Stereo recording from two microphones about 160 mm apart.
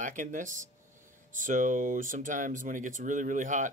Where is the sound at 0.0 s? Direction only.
55° right (ahead or behind).